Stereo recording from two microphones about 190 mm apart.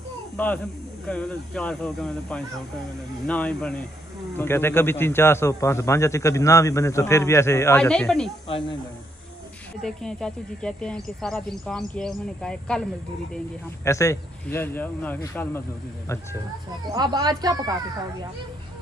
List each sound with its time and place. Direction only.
1.0 s a man's voice: 5° left (ahead or behind)
8.5 s speech: 30° left (ahead or behind)
9.8 s speech: 5° left (ahead or behind)
13.8 s a man's voice: 15° left (ahead or behind)
16.9 s speech: 20° right (ahead or behind)